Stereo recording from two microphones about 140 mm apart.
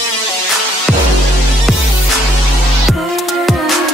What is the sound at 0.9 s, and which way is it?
Music, centre (ahead or behind).